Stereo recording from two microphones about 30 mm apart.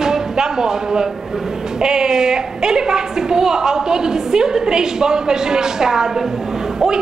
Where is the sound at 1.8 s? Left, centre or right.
Right.